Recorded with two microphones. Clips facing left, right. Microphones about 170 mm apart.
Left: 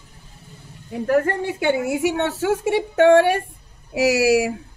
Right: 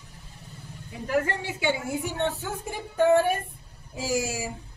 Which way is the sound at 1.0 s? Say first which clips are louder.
Left 7 dB; 50° left (ahead or behind).